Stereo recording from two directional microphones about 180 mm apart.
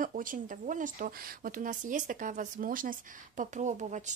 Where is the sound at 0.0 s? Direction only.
50° right (ahead or behind).